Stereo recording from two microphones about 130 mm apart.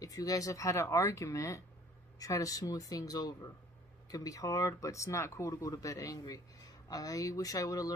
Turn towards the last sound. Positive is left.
turn(degrees=25)  # may be behind; listen again after turning